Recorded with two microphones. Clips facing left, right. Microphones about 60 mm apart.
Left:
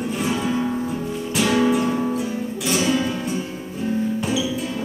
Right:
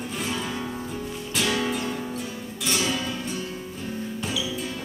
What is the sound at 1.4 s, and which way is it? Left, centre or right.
Music, left.